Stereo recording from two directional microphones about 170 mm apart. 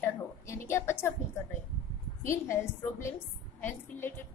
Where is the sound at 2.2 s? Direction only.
15° left (ahead or behind).